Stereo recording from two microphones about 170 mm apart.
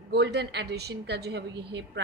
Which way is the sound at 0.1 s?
75° right (ahead or behind).